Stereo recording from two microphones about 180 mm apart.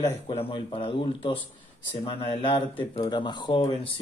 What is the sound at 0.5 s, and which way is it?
Speech, 30° left (ahead or behind).